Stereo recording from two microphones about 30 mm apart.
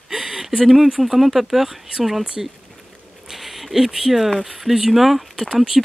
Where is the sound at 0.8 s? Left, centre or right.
Centre.